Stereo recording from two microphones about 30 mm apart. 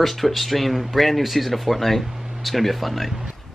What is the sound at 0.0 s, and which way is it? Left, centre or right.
Speech, centre.